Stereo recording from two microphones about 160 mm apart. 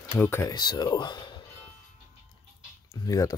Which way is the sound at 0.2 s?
15° left (ahead or behind).